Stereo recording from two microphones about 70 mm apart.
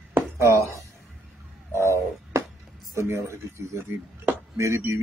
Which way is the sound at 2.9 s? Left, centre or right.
Right.